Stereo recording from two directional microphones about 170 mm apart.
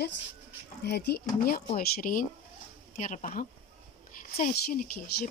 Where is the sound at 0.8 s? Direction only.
75° left (ahead or behind); by 3.5 s 50° left (ahead or behind).